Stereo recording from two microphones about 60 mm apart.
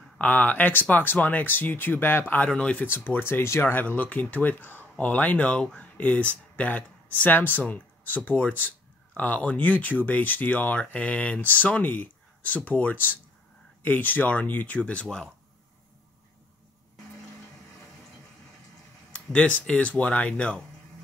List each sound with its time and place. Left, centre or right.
0.2 s speech: left
2.2 s speech: left
19.1 s speech: left